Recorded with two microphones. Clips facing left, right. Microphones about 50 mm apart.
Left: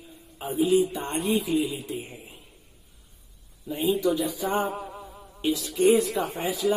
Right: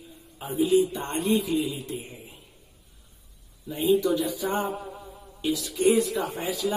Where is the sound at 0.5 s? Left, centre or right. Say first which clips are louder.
Even; centre.